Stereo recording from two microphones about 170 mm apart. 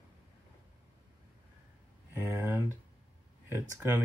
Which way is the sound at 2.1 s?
15° right (ahead or behind).